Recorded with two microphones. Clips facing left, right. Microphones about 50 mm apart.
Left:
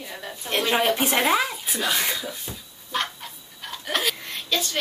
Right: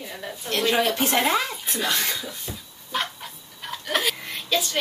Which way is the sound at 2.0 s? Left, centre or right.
Centre.